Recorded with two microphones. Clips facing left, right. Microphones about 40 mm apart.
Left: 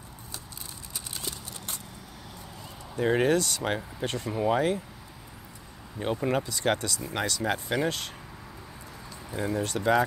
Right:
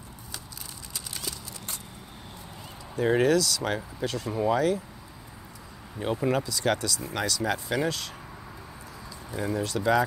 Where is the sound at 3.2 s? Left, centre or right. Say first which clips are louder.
Right 3 dB; left.